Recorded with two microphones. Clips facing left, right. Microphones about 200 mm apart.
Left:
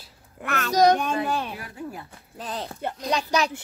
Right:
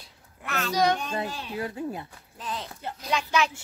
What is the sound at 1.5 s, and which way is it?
Speech, 25° right (ahead or behind).